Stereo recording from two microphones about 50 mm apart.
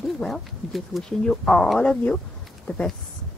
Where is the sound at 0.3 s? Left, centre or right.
Centre.